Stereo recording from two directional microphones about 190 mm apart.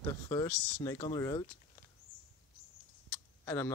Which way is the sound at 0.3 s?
15° left (ahead or behind).